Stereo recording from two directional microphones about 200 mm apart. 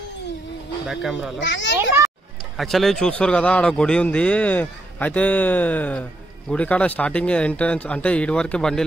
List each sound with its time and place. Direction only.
0.8 s speech: centre (ahead or behind)
1.4 s a child's voice: 65° left (ahead or behind)
2.5 s a man's voice: centre (ahead or behind)